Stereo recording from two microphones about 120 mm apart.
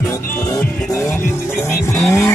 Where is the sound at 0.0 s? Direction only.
20° left (ahead or behind).